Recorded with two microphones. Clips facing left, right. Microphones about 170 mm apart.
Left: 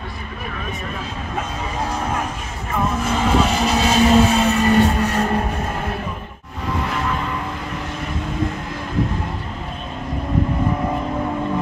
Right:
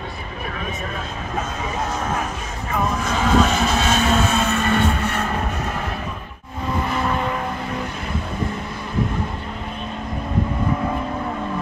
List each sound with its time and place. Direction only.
3.0 s vehicle: 10° left (ahead or behind)
4.1 s vehicle: 35° left (ahead or behind)